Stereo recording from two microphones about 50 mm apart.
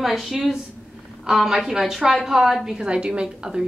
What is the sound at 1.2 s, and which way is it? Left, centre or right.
A woman's voice, centre.